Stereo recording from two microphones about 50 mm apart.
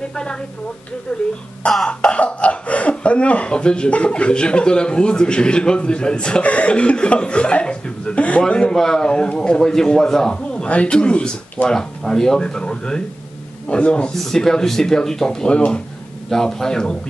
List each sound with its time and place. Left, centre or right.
1.9 s speech: left
11.7 s speech: centre
14.1 s speech: centre
15.5 s speech: left
16.3 s speech: centre